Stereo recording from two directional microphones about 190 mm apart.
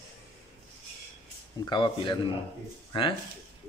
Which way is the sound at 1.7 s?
25° left (ahead or behind).